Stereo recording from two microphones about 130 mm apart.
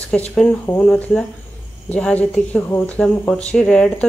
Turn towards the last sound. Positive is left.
turn(degrees=5)  # may be behind; listen again after turning